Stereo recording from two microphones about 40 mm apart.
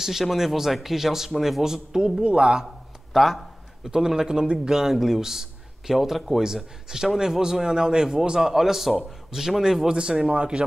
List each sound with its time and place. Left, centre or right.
0.0 s a man's voice: centre
2.2 s a man's voice: right
3.1 s a sound: centre
3.9 s a man's voice: centre
4.7 s a man's voice: centre
6.4 s a man's voice: centre